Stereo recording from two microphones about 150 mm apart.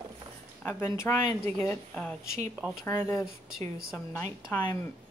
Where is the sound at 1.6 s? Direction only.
10° left (ahead or behind).